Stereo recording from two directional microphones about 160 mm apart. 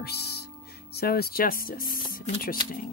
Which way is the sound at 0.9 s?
75° left (ahead or behind).